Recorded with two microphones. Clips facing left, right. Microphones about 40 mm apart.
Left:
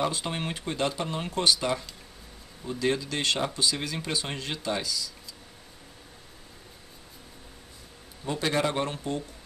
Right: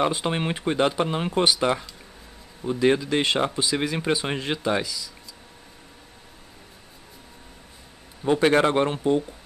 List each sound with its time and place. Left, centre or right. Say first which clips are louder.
0.0 s speech: right 6 dB; right
8.2 s speech: right 8 dB; right